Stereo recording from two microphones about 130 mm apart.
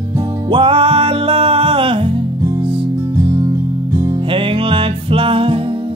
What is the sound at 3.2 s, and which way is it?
Music, 25° right (ahead or behind).